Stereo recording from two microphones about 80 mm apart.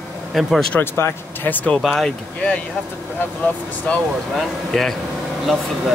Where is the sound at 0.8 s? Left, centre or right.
Left.